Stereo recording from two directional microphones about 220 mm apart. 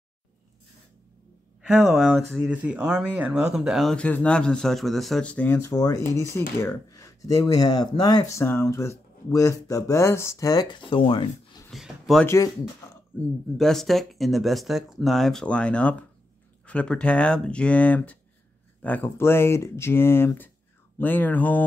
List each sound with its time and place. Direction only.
1.6 s speech: 5° right (ahead or behind); by 11.6 s 25° left (ahead or behind)
11.7 s a sound: centre (ahead or behind)
13.6 s speech: centre (ahead or behind)